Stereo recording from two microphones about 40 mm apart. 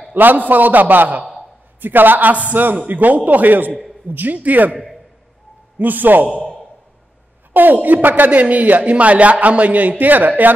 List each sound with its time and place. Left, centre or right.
0.1 s a man's voice: right
5.8 s a man's voice: right
7.5 s speech: right